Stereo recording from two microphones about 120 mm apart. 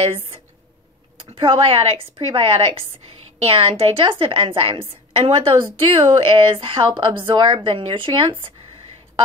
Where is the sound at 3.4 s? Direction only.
55° right (ahead or behind).